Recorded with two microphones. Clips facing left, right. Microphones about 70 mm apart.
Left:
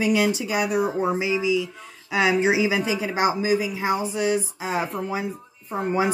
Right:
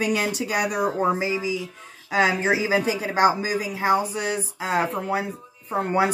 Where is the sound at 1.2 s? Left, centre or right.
Right.